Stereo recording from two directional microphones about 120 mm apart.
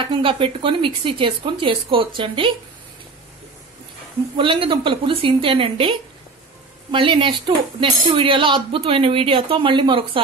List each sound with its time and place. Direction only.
0.0 s speech: 45° right (ahead or behind)
4.4 s speech: 45° right (ahead or behind)